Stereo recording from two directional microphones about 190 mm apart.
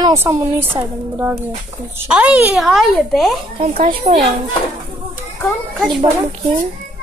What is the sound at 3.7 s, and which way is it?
Speech, 45° right (ahead or behind).